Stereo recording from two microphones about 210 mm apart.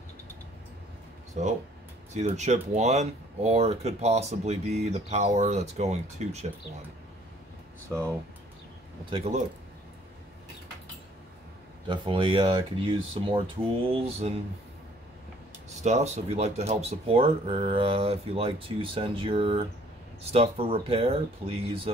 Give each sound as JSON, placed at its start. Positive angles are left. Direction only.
{"t": 1.4, "sound": "speech", "side_deg": -35}
{"t": 9.1, "sound": "speech", "side_deg": -30}
{"t": 11.9, "sound": "speech", "side_deg": -25}
{"t": 15.7, "sound": "speech", "side_deg": -35}